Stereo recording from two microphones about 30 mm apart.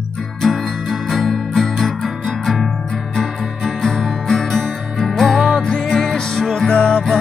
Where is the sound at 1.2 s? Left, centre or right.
Centre.